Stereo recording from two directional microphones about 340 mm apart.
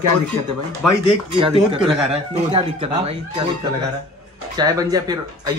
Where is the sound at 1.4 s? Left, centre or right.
Centre.